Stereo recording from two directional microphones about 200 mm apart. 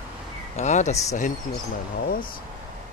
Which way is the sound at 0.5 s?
35° left (ahead or behind).